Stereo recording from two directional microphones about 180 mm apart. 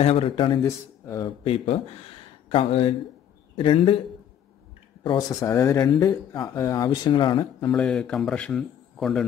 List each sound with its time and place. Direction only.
0.0 s speech: 30° left (ahead or behind)
1.4 s a man's voice: 35° left (ahead or behind)
5.0 s speech: 20° left (ahead or behind)
7.7 s a man's voice: 5° left (ahead or behind)